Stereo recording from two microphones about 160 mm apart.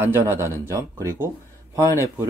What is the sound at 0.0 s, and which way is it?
Speech, 15° right (ahead or behind).